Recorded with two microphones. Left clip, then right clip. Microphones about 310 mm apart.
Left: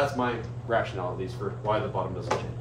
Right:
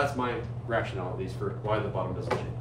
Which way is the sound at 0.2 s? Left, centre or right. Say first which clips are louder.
Left 2 dB; centre.